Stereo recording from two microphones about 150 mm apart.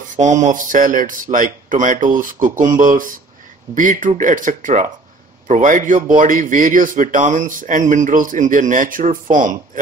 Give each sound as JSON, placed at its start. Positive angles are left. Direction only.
{"t": 0.1, "sound": "a man's voice", "side_deg": -55}